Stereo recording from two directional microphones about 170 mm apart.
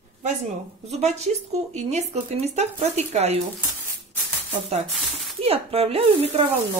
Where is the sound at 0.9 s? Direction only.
40° right (ahead or behind).